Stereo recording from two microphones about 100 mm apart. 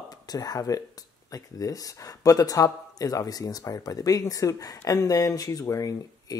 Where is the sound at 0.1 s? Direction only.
40° left (ahead or behind).